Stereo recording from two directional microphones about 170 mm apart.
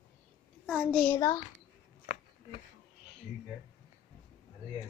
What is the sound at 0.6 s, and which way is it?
Speech, centre (ahead or behind).